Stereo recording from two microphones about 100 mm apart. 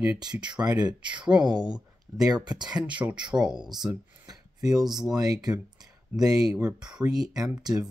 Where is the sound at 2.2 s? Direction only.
45° right (ahead or behind).